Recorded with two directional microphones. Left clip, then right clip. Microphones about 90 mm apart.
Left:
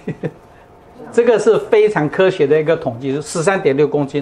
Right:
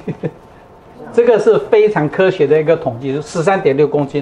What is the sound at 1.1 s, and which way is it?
Speech, 35° left (ahead or behind).